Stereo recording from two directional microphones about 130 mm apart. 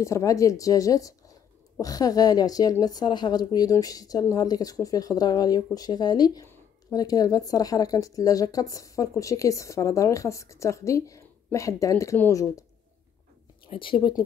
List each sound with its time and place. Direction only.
0.0 s a woman's voice: 25° left (ahead or behind)
13.7 s speech: 40° left (ahead or behind)